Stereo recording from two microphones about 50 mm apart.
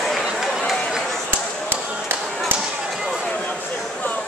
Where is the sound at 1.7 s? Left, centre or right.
Right.